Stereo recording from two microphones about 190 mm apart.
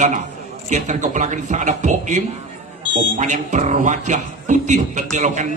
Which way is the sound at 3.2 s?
40° right (ahead or behind).